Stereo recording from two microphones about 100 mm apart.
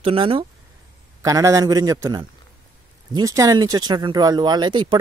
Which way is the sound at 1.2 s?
35° right (ahead or behind).